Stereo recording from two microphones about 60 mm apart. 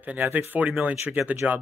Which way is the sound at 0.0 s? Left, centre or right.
Right.